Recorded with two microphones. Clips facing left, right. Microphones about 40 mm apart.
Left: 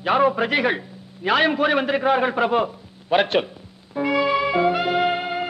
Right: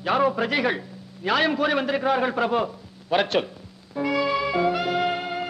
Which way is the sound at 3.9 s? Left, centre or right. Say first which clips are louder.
Left 3 dB; centre.